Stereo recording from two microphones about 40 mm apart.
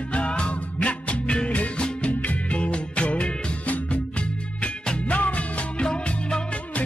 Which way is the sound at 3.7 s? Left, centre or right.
Left.